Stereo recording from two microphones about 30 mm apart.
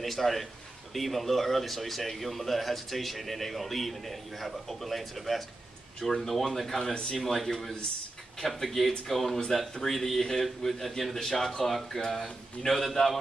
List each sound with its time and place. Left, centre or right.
0.0 s a man's voice: centre
5.9 s speech: centre
6.8 s speech: left
7.3 s speech: centre
11.1 s speech: centre